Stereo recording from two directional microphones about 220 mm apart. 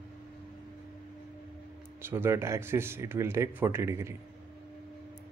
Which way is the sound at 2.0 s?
10° right (ahead or behind).